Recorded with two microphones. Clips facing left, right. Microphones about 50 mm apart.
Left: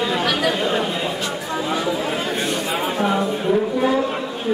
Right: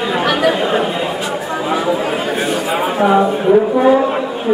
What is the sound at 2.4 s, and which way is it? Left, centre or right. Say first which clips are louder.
Speech: right 5 dB; centre.